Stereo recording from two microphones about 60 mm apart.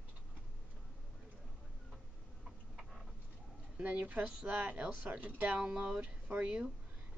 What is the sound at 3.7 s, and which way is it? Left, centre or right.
Speech, right.